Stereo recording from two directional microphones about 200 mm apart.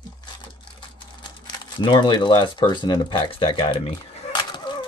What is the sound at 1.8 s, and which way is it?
Speech, 25° left (ahead or behind).